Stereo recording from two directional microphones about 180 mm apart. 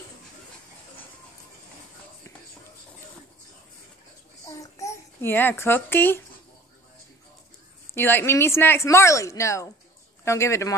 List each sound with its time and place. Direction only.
4.5 s babbling: 15° left (ahead or behind)
7.9 s speech: 10° left (ahead or behind)